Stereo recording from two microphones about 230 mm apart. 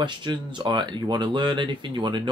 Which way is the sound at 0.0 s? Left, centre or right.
Centre.